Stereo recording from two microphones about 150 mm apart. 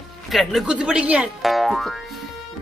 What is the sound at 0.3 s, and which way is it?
Speech, centre (ahead or behind).